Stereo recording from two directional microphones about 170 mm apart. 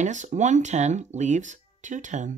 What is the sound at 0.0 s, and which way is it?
Speech, 45° right (ahead or behind).